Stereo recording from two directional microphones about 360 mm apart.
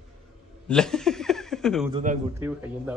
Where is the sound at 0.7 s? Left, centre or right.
Centre.